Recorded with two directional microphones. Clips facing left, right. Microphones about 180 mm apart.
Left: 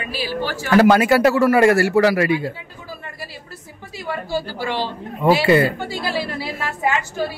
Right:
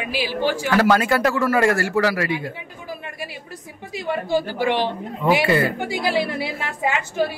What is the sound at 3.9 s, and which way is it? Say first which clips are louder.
A woman's voice: right 3 dB; 20° right (ahead or behind).